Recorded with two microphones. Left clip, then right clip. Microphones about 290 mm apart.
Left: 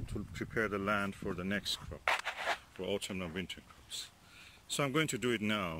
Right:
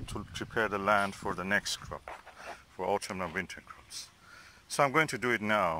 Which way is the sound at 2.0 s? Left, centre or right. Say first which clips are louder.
Left 11 dB; left.